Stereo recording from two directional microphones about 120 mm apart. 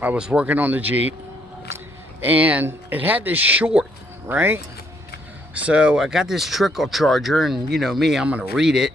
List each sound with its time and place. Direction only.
0.0 s speech: 10° right (ahead or behind)
2.2 s speech: 10° right (ahead or behind)